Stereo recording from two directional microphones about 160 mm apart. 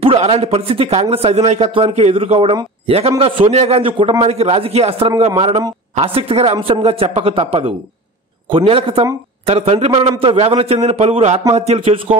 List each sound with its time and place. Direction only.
0.0 s a man's voice: 35° right (ahead or behind)